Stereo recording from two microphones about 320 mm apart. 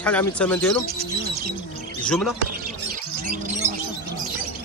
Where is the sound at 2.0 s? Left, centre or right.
Centre.